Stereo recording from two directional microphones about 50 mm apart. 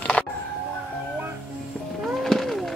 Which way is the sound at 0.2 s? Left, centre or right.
Left.